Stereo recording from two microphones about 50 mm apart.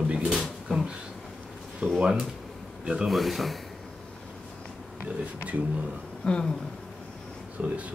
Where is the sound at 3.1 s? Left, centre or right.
Centre.